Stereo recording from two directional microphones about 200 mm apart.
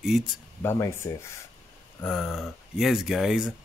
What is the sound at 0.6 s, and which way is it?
Speech, 10° left (ahead or behind).